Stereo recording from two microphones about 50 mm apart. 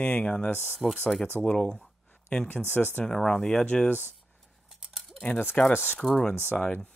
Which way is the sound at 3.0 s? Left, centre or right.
Centre.